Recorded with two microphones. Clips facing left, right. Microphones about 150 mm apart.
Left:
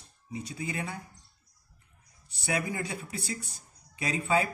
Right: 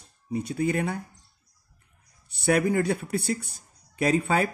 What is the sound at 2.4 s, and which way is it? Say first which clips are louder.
Speech: right 10 dB; 60° right (ahead or behind).